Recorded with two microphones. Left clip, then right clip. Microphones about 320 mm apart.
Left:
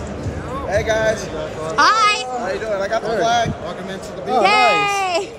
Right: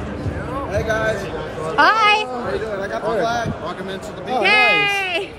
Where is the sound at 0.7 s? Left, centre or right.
Left.